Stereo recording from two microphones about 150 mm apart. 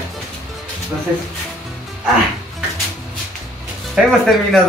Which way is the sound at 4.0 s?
5° right (ahead or behind).